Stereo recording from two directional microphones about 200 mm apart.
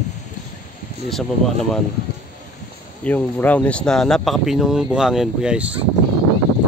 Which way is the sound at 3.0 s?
5° left (ahead or behind).